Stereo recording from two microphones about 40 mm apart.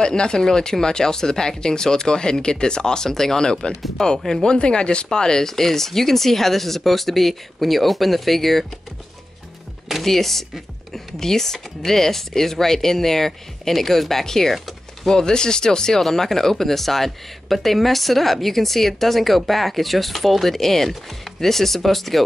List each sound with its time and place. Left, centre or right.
0.0 s speech: left; by 8.6 s centre
10.0 s speech: centre